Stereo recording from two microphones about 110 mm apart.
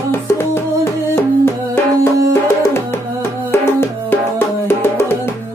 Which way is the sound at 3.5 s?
20° left (ahead or behind).